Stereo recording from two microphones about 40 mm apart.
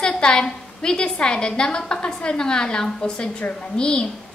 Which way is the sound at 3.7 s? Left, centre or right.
Left.